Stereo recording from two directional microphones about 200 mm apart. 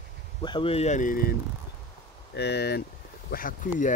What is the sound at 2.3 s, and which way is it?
Speech, 55° left (ahead or behind).